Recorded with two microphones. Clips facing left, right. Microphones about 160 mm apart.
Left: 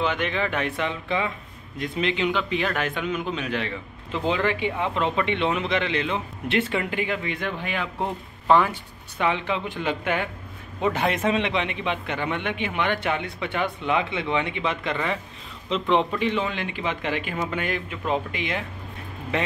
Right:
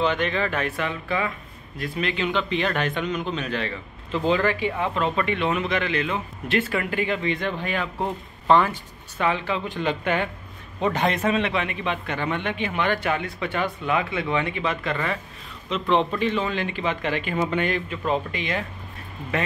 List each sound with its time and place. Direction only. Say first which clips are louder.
0.0 s a man's voice: right 2 dB; 10° left (ahead or behind)
2.3 s a man's voice: right 1 dB; 5° left (ahead or behind)
11.2 s a man's voice: even; 20° left (ahead or behind)